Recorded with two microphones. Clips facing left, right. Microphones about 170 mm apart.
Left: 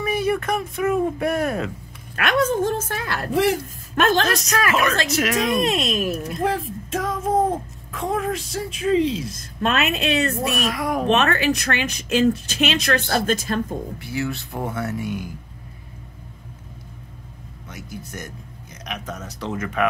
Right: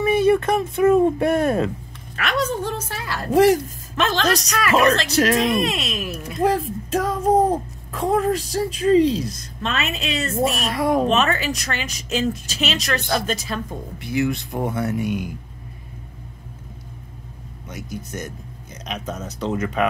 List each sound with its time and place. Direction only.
0.0 s speech: 25° right (ahead or behind)
2.1 s a woman's voice: 55° left (ahead or behind)
4.3 s speech: 35° right (ahead or behind)
5.6 s speech: 40° left (ahead or behind)
6.5 s speech: 35° right (ahead or behind)
9.6 s speech: 55° left (ahead or behind)
10.7 s speech: 25° right (ahead or behind)
11.1 s speech: 60° left (ahead or behind)
13.9 s speech: 20° right (ahead or behind)
17.6 s speech: 20° right (ahead or behind)